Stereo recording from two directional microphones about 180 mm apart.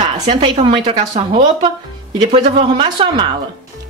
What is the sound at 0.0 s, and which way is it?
A woman's voice, 25° right (ahead or behind).